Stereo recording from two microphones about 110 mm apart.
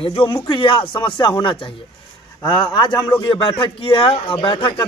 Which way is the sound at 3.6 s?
55° left (ahead or behind).